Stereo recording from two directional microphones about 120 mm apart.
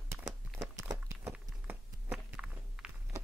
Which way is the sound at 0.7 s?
30° right (ahead or behind).